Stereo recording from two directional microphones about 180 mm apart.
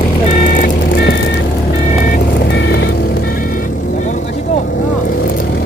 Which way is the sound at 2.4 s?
75° left (ahead or behind).